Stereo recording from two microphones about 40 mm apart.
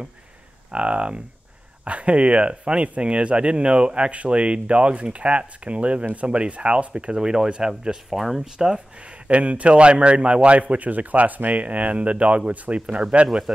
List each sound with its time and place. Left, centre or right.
0.7 s a man's voice: right; by 8.5 s centre
8.5 s speech: centre
9.3 s a man's voice: right